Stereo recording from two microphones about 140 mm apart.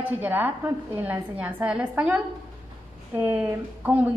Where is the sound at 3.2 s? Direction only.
15° right (ahead or behind).